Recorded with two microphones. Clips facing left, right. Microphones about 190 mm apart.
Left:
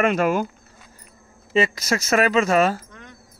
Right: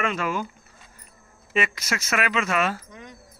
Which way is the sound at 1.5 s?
30° left (ahead or behind).